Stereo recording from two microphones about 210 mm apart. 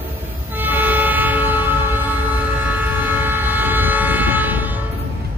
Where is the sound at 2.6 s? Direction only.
10° right (ahead or behind).